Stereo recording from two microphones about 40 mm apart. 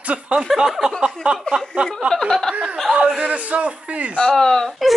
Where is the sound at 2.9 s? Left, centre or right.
Right.